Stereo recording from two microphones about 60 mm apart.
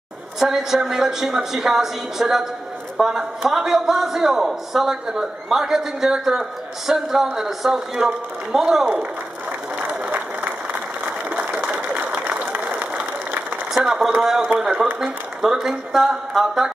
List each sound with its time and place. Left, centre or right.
0.4 s a man's voice: centre
9.8 s applause: right
11.2 s a sound: right
13.7 s a man's voice: centre